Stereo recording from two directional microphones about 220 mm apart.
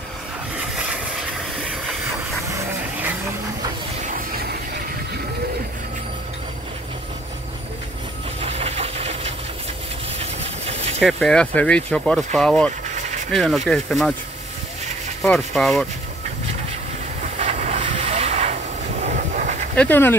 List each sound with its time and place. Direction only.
4.0 s vehicle: 40° right (ahead or behind)
8.4 s steam: 30° right (ahead or behind)
10.1 s vehicle: 30° right (ahead or behind)
11.0 s speech: centre (ahead or behind)
15.2 s speech: 5° left (ahead or behind)
17.4 s vehicle: 30° right (ahead or behind)
19.7 s speech: 10° left (ahead or behind)